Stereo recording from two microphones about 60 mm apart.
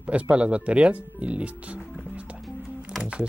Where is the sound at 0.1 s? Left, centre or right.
Centre.